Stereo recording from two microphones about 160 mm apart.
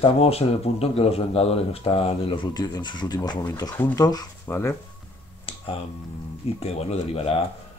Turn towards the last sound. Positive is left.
turn(degrees=40)  # may be behind; listen again after turning